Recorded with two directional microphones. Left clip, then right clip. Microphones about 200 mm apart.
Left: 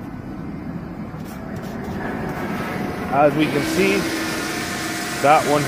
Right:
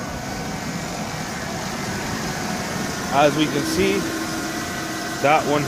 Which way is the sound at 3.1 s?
15° right (ahead or behind).